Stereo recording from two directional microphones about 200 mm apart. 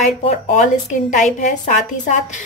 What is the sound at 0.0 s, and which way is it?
A woman's voice, 35° left (ahead or behind).